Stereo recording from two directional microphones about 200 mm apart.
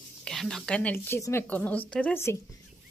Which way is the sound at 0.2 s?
Centre (ahead or behind).